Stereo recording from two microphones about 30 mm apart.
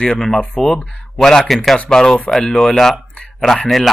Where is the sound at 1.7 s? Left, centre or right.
Left.